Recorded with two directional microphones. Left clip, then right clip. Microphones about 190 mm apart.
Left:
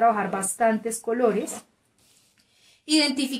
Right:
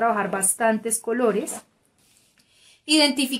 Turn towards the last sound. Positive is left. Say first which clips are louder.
# right 3 dB
turn(degrees=-30)  # may be behind; listen again after turning